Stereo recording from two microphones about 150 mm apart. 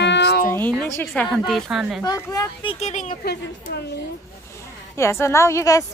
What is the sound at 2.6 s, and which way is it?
Speech, 45° left (ahead or behind).